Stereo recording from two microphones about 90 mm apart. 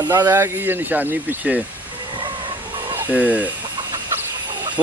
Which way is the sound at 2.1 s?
65° right (ahead or behind).